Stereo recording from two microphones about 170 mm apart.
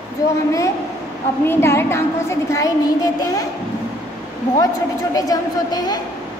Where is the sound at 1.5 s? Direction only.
15° left (ahead or behind).